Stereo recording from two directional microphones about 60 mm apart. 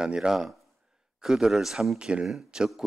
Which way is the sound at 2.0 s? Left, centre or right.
Centre.